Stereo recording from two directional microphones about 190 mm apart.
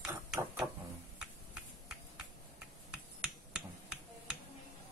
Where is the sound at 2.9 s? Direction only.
5° right (ahead or behind).